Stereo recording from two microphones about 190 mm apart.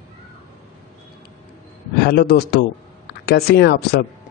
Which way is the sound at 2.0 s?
55° left (ahead or behind).